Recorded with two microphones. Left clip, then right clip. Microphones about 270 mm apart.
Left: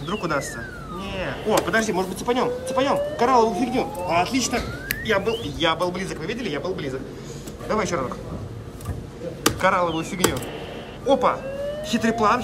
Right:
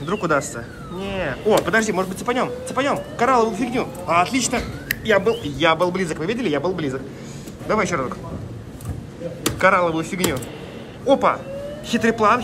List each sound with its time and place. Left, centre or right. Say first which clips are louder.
0.0 s speech: right 5 dB; centre
2.2 s speech: even; centre
3.3 s a man's voice: even; centre
9.6 s speech: right 6 dB; centre